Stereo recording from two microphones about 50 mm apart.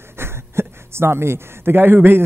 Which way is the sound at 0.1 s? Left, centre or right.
Right.